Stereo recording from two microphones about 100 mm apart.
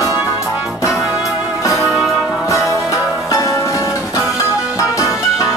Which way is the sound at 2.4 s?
30° left (ahead or behind).